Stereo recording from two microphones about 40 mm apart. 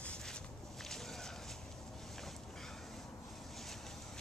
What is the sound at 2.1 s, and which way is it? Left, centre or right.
Boat, centre.